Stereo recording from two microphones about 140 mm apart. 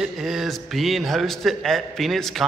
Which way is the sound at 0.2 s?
Centre (ahead or behind).